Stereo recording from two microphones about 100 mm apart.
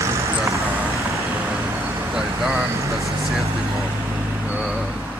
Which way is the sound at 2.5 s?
30° right (ahead or behind).